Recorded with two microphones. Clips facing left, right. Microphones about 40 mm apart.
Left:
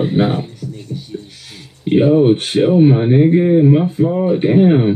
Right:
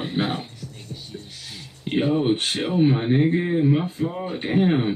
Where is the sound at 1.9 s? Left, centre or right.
Centre.